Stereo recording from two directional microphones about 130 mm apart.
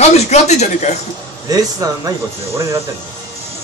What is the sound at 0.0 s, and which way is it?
Speech, 60° left (ahead or behind).